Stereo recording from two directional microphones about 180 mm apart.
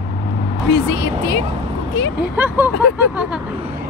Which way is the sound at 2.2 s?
10° right (ahead or behind).